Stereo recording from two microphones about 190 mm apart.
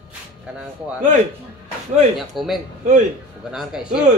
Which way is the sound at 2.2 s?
Centre (ahead or behind).